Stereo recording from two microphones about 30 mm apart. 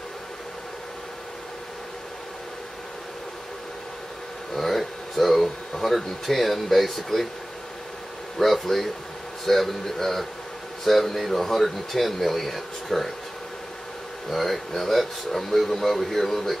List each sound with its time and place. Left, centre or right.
4.6 s speech: centre
8.4 s a man's voice: centre
14.3 s speech: centre